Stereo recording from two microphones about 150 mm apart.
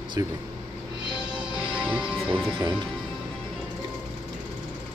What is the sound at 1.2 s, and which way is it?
Music, 5° right (ahead or behind).